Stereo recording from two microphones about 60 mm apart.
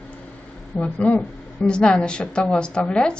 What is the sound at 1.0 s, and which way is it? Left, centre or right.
Speech, left.